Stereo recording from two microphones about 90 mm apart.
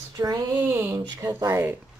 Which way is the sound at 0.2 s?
35° right (ahead or behind).